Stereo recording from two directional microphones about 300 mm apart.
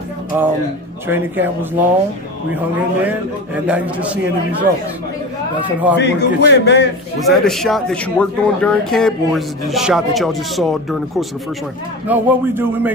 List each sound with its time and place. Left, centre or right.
0.3 s a man's voice: centre
3.0 s speech: centre
5.9 s a man's voice: left
7.2 s speech: centre